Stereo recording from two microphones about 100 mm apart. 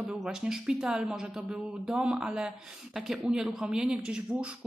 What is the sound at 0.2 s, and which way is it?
Speech, 5° right (ahead or behind).